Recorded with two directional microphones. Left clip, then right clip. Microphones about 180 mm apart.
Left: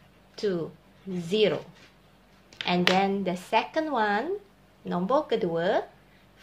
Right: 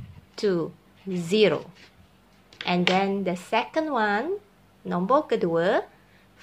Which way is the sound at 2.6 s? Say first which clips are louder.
Right 1 dB; 20° right (ahead or behind).